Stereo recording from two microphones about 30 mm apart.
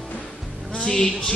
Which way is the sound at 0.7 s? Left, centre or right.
Left.